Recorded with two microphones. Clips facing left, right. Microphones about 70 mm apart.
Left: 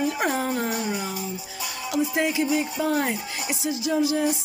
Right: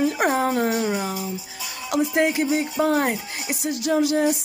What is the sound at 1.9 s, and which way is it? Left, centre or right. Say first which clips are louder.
Music: right 4 dB; right.